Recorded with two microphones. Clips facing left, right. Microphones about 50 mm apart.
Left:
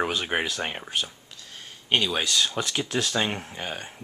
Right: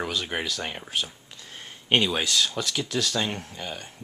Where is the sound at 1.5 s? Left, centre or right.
Centre.